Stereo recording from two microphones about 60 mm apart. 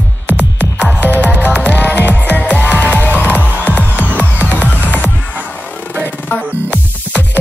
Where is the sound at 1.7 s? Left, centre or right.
Left.